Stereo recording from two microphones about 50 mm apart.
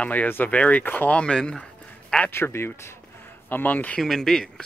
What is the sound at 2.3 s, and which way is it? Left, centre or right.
Speech, left.